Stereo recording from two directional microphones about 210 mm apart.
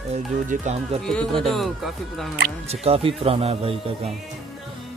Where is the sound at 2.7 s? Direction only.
25° right (ahead or behind).